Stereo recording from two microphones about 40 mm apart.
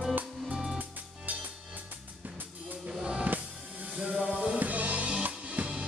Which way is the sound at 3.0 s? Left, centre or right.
Right.